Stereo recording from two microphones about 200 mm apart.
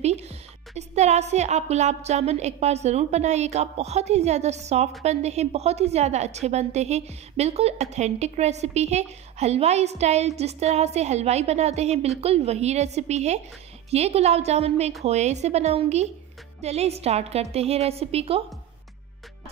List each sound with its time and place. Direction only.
0.0 s a woman's voice: 35° right (ahead or behind)